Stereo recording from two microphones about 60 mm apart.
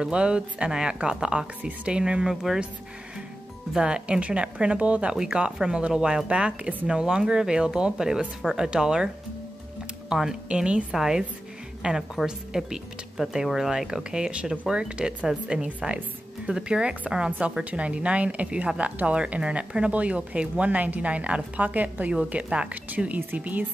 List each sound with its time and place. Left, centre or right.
0.0 s speech: centre
3.7 s speech: centre
6.9 s a woman's voice: centre